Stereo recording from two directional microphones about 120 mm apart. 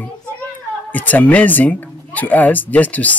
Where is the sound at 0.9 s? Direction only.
15° left (ahead or behind).